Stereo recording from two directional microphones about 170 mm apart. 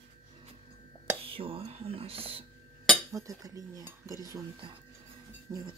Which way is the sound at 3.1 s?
20° right (ahead or behind).